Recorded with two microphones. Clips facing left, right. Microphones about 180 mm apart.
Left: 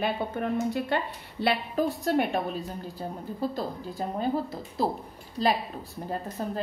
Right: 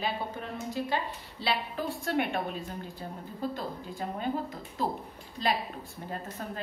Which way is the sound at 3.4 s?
35° left (ahead or behind).